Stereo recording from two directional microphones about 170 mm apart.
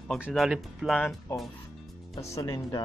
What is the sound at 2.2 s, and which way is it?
Music, 15° left (ahead or behind).